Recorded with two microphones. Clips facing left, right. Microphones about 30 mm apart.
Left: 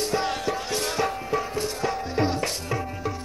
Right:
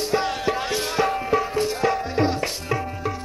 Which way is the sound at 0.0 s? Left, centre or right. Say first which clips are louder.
Right 3 dB; centre.